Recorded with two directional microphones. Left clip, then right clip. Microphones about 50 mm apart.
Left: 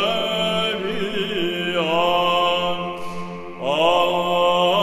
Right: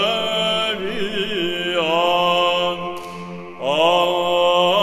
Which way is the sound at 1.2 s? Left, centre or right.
Right.